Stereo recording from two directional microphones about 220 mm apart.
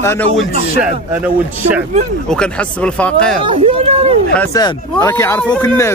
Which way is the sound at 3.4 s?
25° right (ahead or behind).